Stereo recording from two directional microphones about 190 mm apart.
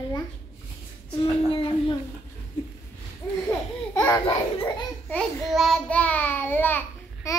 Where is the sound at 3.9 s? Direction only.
15° left (ahead or behind).